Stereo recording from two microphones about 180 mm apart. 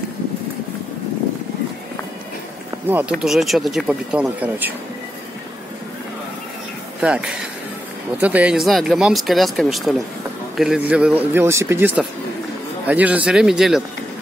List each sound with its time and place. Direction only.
2.9 s speech: 10° right (ahead or behind)
7.0 s speech: 5° right (ahead or behind)